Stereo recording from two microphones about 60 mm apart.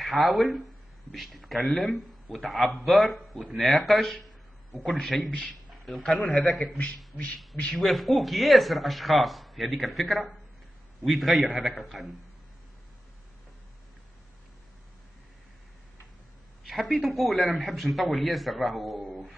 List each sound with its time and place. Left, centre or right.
0.0 s a man's voice: centre
5.7 s a sound: centre
6.0 s a man's voice: centre
7.8 s a man's voice: centre
16.6 s a man's voice: centre